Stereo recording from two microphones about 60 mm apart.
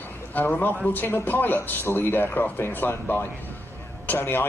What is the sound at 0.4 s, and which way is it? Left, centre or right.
A man's voice, left.